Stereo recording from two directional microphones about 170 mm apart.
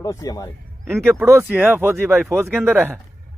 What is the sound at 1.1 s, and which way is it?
Speech, 15° right (ahead or behind).